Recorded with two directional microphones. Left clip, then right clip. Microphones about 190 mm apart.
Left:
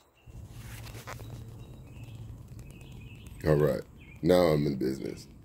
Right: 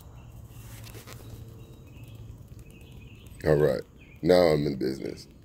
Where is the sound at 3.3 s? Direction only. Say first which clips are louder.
Right 3 dB; 10° left (ahead or behind).